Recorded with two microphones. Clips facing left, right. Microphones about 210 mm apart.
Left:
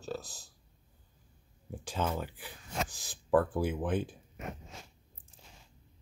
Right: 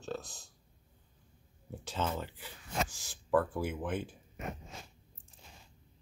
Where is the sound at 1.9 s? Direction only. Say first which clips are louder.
Left 2 dB; 10° left (ahead or behind).